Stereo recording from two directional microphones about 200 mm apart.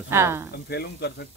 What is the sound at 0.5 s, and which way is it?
Speech, 55° left (ahead or behind).